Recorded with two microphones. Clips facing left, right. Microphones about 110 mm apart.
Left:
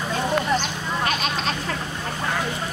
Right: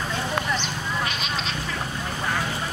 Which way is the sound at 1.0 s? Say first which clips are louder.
Left 4 dB; 45° left (ahead or behind).